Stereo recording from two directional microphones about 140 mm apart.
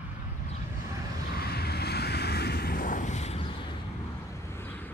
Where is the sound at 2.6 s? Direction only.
80° left; by 3.4 s 55° left (ahead or behind).